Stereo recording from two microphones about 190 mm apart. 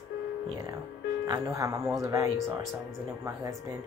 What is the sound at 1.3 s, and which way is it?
Speech, 15° right (ahead or behind).